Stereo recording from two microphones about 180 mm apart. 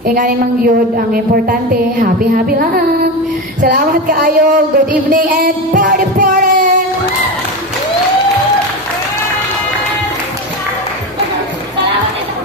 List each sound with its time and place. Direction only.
0.0 s a woman's voice: 50° right (ahead or behind)